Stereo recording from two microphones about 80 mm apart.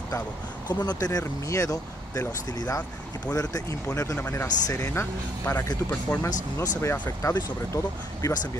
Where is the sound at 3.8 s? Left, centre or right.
Left.